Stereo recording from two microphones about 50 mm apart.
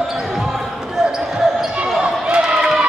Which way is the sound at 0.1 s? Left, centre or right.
Centre.